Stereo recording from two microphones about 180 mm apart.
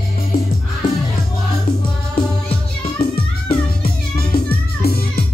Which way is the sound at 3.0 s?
55° left (ahead or behind).